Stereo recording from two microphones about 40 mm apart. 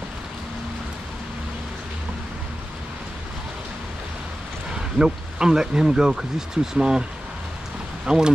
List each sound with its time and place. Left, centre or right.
4.7 s speech: centre